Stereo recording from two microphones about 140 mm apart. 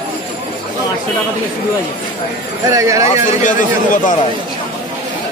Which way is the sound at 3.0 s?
60° left (ahead or behind).